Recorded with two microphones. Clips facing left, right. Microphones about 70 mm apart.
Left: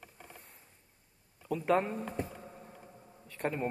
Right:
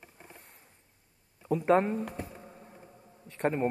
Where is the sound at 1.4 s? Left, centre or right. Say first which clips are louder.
Right 5 dB; right.